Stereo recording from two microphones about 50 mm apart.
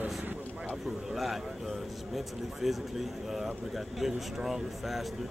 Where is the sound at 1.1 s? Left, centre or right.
Centre.